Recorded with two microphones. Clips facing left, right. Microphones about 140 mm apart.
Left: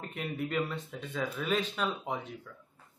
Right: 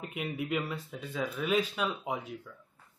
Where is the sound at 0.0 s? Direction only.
10° right (ahead or behind).